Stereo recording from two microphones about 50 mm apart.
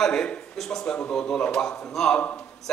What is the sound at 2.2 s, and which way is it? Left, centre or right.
Speech, left.